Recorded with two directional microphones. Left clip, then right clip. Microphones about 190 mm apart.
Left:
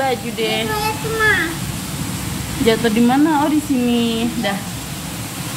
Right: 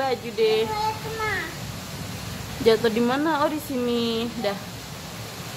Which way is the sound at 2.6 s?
30° right (ahead or behind).